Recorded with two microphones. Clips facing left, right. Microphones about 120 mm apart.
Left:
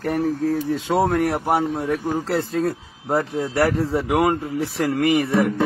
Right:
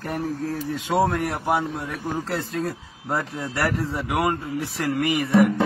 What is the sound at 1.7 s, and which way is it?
Speech, 20° left (ahead or behind).